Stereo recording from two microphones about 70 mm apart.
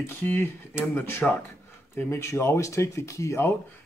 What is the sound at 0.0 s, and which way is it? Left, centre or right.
Speech, left.